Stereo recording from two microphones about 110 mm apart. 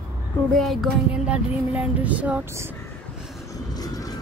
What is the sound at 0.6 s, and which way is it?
Speech, centre (ahead or behind).